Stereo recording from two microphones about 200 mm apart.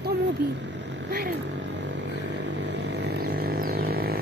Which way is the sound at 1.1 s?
55° right (ahead or behind).